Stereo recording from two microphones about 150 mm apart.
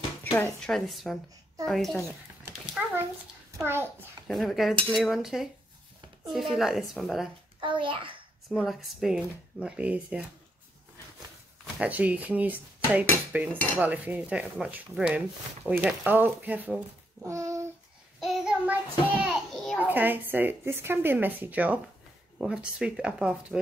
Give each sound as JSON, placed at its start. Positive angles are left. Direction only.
{"t": 0.6, "sound": "a woman's voice", "side_deg": 0}
{"t": 4.3, "sound": "speech", "side_deg": 0}
{"t": 7.6, "sound": "a child's voice", "side_deg": -35}
{"t": 8.5, "sound": "speech", "side_deg": 0}
{"t": 11.8, "sound": "a woman's voice", "side_deg": -10}
{"t": 17.3, "sound": "a sound", "side_deg": -20}
{"t": 18.2, "sound": "speech", "side_deg": -5}
{"t": 19.2, "sound": "a sound", "side_deg": 5}
{"t": 19.8, "sound": "a woman's voice", "side_deg": -10}